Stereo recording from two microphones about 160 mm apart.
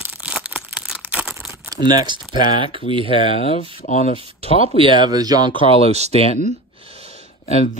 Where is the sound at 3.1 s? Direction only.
40° left (ahead or behind).